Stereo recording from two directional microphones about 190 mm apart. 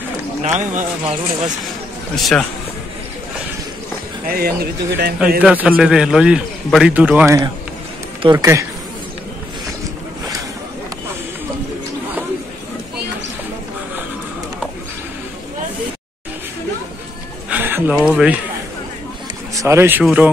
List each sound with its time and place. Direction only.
0.4 s speech: 40° right (ahead or behind)
2.1 s a man's voice: centre (ahead or behind)
4.3 s speech: 55° right (ahead or behind)
5.4 s a man's voice: 5° right (ahead or behind)
17.5 s a sound: 10° right (ahead or behind)
17.9 s a man's voice: 5° right (ahead or behind)
19.5 s speech: 15° right (ahead or behind)